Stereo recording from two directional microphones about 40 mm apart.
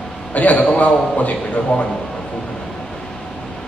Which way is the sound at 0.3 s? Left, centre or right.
Left.